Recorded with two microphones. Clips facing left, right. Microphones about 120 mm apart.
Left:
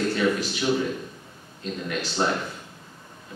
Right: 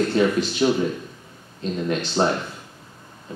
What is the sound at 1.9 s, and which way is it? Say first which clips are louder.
Speech: right 5 dB; 30° right (ahead or behind).